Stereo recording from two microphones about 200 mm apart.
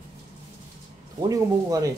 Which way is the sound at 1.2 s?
15° right (ahead or behind).